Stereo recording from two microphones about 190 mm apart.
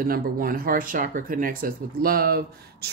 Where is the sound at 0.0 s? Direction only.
50° right (ahead or behind).